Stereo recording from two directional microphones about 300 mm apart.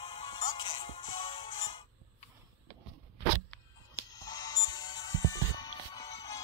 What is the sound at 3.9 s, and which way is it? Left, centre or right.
Music, centre.